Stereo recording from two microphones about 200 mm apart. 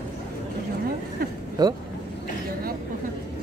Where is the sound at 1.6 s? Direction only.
20° right (ahead or behind).